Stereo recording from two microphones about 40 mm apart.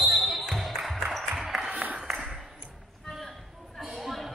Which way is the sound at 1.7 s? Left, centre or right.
Right.